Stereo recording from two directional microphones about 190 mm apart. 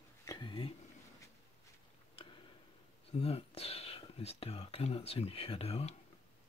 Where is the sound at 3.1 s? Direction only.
30° left (ahead or behind).